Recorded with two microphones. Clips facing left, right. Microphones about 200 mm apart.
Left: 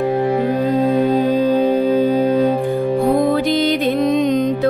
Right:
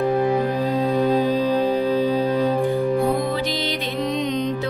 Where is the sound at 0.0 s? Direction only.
25° left (ahead or behind).